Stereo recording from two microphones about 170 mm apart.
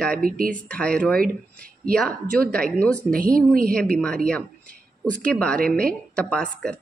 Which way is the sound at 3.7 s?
5° left (ahead or behind).